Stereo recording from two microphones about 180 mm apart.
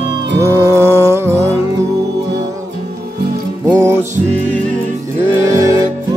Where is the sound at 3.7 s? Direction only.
15° right (ahead or behind).